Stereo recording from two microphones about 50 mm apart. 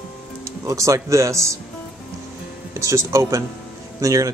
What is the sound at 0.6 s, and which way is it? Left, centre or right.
Speech, right.